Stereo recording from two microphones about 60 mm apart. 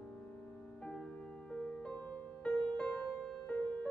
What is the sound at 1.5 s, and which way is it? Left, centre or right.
Music, centre.